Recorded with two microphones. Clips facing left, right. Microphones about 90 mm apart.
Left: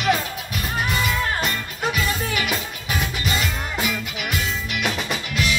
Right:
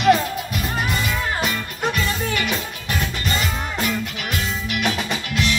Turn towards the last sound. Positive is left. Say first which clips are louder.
# right 1 dB
turn(degrees=0)  # may be behind; listen again after turning